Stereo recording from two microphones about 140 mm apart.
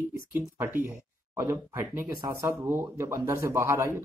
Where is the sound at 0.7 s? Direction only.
15° right (ahead or behind).